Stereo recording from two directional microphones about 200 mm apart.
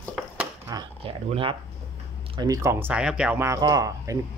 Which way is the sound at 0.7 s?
25° right (ahead or behind).